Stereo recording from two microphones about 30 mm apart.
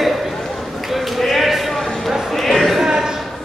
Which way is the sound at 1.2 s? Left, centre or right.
Centre.